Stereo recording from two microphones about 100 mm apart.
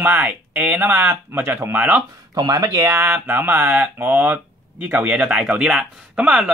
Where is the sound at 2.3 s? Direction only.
40° right (ahead or behind).